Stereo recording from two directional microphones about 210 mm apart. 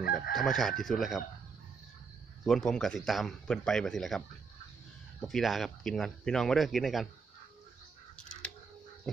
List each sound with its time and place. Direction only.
0.0 s chicken: 45° left (ahead or behind)
0.3 s speech: centre (ahead or behind)
2.4 s speech: centre (ahead or behind)
5.2 s speech: centre (ahead or behind)